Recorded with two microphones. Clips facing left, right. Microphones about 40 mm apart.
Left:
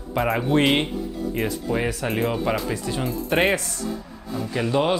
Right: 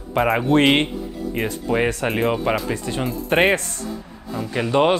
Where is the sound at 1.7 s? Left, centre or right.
Right.